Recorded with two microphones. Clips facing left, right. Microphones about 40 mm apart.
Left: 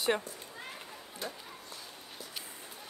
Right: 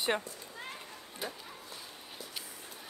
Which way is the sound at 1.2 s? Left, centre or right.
Centre.